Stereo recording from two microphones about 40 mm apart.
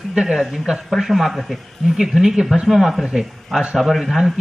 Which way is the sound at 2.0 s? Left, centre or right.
Centre.